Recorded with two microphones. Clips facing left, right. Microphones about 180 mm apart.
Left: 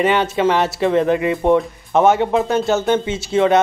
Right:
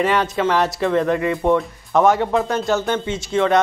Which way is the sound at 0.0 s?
25° left (ahead or behind).